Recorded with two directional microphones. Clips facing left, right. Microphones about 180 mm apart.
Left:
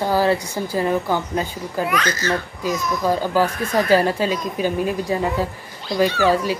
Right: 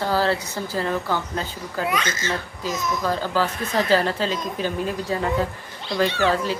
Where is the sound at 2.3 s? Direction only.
15° left (ahead or behind).